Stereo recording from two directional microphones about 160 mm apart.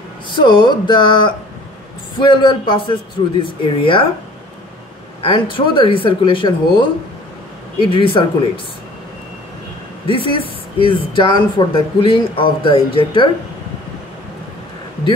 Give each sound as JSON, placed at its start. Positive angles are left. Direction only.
{"t": 0.3, "sound": "speech", "side_deg": 30}
{"t": 5.2, "sound": "speech", "side_deg": 30}
{"t": 10.0, "sound": "speech", "side_deg": 30}